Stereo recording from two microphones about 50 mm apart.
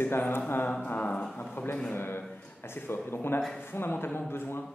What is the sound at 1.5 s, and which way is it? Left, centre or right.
A man's voice, left.